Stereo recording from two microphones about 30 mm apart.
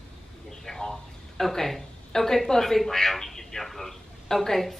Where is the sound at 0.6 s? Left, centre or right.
Centre.